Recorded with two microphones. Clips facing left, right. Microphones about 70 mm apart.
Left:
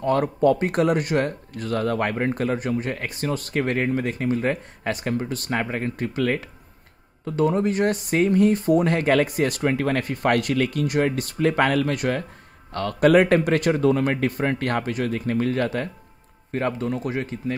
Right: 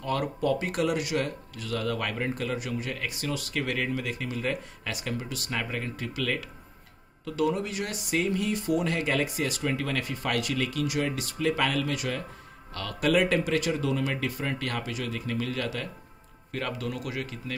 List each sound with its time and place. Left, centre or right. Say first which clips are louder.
0.0 s speech: left 9 dB; left